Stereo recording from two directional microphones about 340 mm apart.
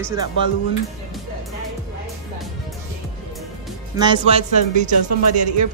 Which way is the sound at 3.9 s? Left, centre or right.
Centre.